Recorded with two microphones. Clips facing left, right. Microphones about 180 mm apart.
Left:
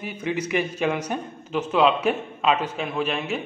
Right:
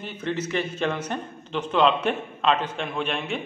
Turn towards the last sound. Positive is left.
turn(degrees=5)  # may be behind; listen again after turning